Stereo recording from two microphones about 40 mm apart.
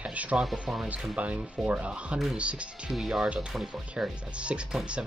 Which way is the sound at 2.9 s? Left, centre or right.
Centre.